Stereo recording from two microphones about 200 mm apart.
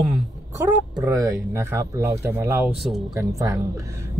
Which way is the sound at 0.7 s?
15° right (ahead or behind).